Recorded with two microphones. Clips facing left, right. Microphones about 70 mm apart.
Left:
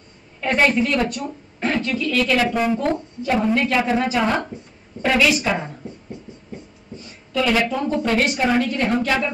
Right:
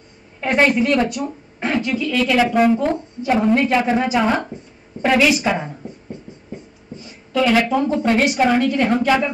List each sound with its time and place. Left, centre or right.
0.4 s a woman's voice: centre
2.5 s a woman's voice: centre
6.9 s a sound: right
7.3 s a woman's voice: centre